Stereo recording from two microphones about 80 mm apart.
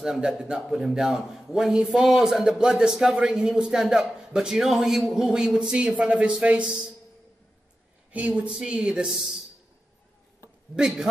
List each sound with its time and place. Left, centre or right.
0.0 s a man's voice: centre
8.1 s a man's voice: centre